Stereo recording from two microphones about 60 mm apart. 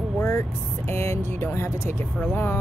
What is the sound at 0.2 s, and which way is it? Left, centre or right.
Speech, left.